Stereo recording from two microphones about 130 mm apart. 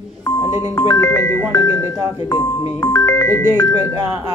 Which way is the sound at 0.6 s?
30° left (ahead or behind).